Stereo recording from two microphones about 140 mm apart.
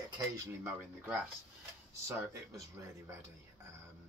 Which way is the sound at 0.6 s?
10° right (ahead or behind).